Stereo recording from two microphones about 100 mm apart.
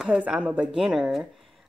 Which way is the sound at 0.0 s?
10° right (ahead or behind).